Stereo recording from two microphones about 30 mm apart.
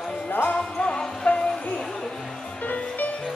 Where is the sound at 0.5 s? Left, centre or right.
Left.